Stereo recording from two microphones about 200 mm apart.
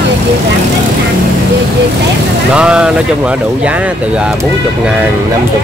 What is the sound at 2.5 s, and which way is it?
Speech, 5° right (ahead or behind).